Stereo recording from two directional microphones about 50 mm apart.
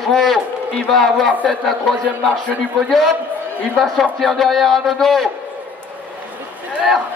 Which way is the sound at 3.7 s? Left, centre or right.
Centre.